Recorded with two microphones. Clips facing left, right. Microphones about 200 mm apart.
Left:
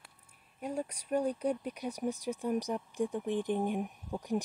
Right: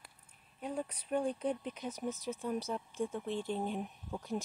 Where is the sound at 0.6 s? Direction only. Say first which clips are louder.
Left 2 dB; 10° left (ahead or behind).